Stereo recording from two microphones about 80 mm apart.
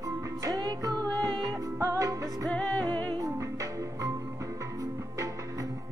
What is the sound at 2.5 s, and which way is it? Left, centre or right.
Music, centre.